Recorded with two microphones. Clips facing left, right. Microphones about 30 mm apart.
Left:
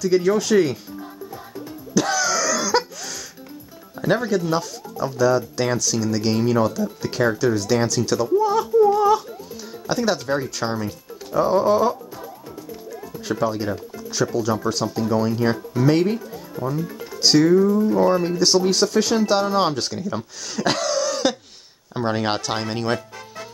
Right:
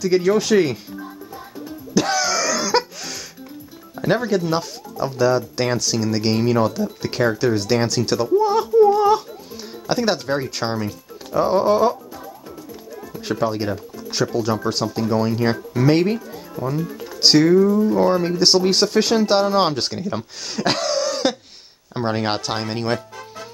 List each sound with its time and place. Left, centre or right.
0.0 s speech: right
2.0 s a sound: right
4.0 s music: right
4.5 s speech: right
13.3 s speech: right
17.6 s speech: centre
18.0 s speech: right
18.7 s speech: right
20.6 s cough: right
21.9 s speech: centre